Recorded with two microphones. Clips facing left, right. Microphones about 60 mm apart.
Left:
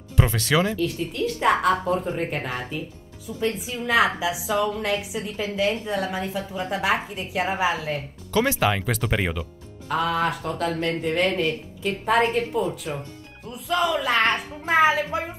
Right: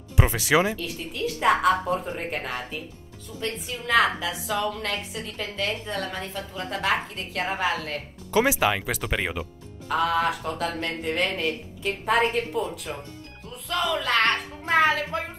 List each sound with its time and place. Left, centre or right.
0.1 s speech: centre
0.7 s a woman's voice: centre
8.3 s speech: centre
8.5 s a woman's voice: centre